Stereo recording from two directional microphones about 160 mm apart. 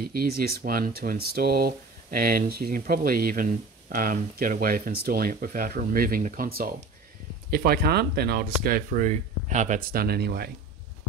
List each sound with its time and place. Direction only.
0.0 s speech: 70° right (ahead or behind)
7.5 s speech: 75° right (ahead or behind)